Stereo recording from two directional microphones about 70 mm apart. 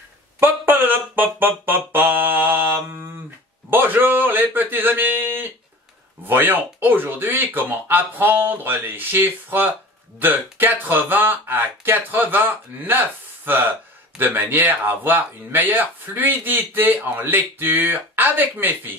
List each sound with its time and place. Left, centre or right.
0.4 s music: right
3.7 s a sound: right
6.2 s speech: right